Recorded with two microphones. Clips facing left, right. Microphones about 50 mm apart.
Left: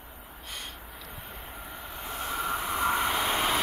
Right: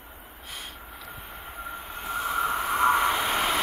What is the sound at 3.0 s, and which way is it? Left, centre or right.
Vehicle, centre.